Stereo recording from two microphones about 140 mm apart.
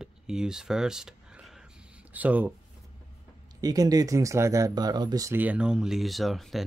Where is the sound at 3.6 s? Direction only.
25° right (ahead or behind).